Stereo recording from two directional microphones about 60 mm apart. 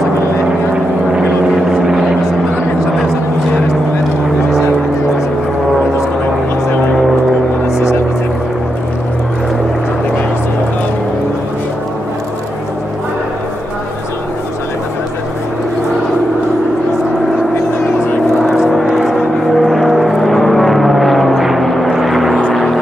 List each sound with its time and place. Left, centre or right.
1.7 s helicopter: centre
7.6 s vehicle: left
18.6 s vehicle: centre